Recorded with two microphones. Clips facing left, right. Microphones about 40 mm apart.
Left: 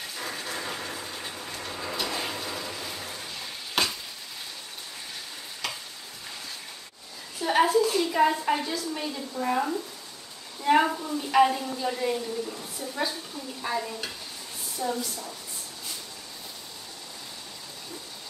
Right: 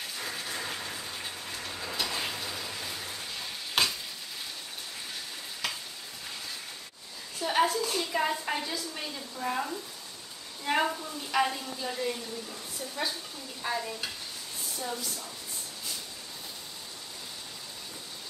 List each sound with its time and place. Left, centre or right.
0.2 s a sound: centre
5.6 s stir: centre
7.3 s a woman's voice: centre
13.6 s stir: centre
14.8 s a woman's voice: centre